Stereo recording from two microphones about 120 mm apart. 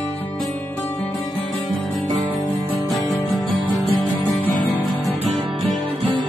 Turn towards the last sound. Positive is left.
turn(degrees=15)  # may be behind; listen again after turning